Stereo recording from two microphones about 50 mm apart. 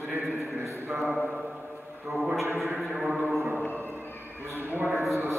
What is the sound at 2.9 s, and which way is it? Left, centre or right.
Mantra, right.